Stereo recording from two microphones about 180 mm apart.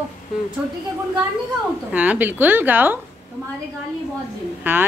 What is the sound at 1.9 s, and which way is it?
A woman's voice, 10° right (ahead or behind).